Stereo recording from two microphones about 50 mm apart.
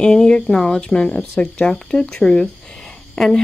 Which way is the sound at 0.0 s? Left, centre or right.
Centre.